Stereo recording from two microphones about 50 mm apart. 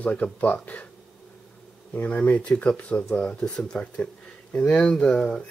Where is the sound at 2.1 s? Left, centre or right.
Left.